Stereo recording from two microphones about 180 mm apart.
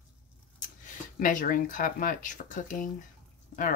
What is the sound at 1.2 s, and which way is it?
Speech, 50° left (ahead or behind).